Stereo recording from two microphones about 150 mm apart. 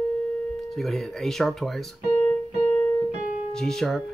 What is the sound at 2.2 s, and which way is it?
Music, 15° left (ahead or behind).